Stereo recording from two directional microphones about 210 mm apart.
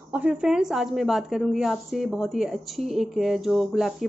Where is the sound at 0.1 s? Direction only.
5° right (ahead or behind).